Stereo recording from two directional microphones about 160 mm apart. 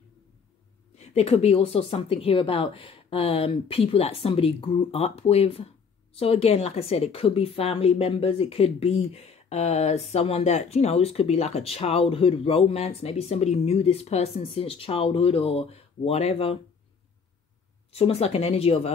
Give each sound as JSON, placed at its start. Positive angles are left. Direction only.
{"t": 0.9, "sound": "a woman's voice", "side_deg": 40}
{"t": 17.9, "sound": "a woman's voice", "side_deg": 40}